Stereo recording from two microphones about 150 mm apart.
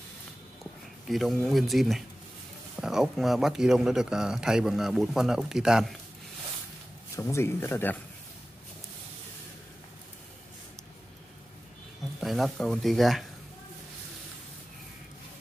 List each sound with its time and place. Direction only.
1.0 s speech: centre (ahead or behind)
7.2 s speech: 20° left (ahead or behind)
12.2 s speech: centre (ahead or behind)